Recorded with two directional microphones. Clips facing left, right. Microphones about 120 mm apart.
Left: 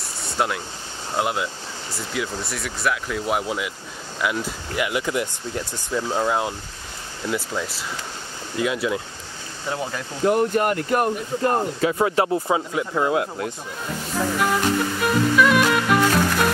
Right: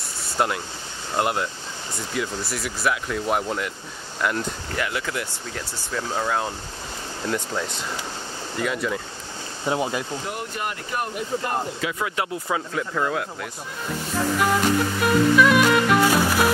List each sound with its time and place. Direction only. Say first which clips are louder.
0.2 s a sound: even; centre (ahead or behind)
1.1 s speech: even; centre (ahead or behind)
4.8 s speech: left 7 dB; 20° left (ahead or behind)
9.7 s speech: right 4 dB; 15° right (ahead or behind)
10.2 s speech: left 11 dB; 50° left (ahead or behind)
11.4 s speech: left 6 dB; 35° left (ahead or behind)
12.4 s speech: left 3 dB; 20° left (ahead or behind)
14.4 s music: right 1 dB; centre (ahead or behind)